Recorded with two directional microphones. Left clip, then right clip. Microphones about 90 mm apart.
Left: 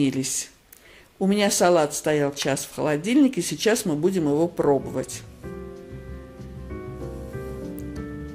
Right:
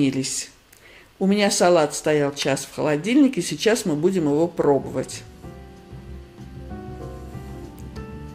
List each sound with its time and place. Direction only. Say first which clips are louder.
0.0 s speech: right 2 dB; 40° left (ahead or behind)